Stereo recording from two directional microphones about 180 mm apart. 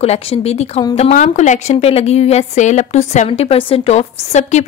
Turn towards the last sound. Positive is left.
turn(degrees=40)  # may be behind; listen again after turning